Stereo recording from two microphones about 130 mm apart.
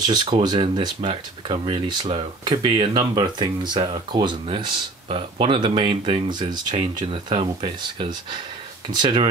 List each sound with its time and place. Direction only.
0.0 s speech: 35° right (ahead or behind)